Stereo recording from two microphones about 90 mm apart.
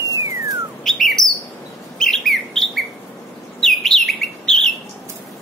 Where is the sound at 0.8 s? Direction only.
5° left (ahead or behind).